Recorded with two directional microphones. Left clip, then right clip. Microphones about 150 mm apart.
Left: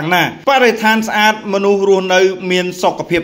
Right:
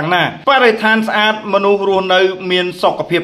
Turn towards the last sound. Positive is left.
turn(degrees=40)  # may be behind; listen again after turning